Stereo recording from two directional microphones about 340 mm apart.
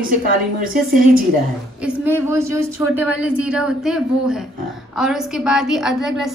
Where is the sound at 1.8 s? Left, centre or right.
Centre.